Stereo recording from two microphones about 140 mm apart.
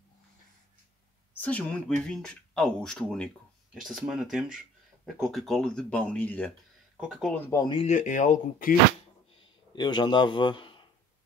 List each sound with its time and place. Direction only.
1.4 s speech: 10° left (ahead or behind)
7.5 s a man's voice: 30° left (ahead or behind)
7.8 s speech: 60° left (ahead or behind)
9.8 s a man's voice: 30° left (ahead or behind)